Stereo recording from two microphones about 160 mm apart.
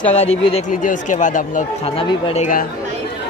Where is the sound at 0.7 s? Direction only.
55° left (ahead or behind).